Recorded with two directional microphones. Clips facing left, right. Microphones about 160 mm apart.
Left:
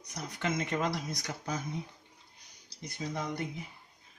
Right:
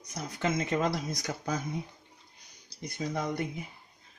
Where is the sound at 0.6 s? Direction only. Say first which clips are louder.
Right 3 dB; 35° right (ahead or behind).